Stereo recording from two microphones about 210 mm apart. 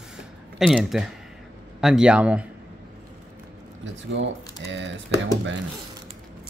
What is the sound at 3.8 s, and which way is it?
Speech, 60° right (ahead or behind).